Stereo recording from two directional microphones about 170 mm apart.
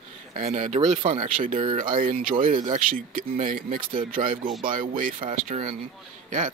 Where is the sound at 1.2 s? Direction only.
55° right (ahead or behind).